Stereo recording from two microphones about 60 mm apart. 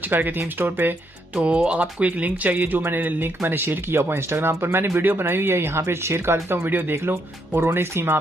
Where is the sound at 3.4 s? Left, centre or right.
Right.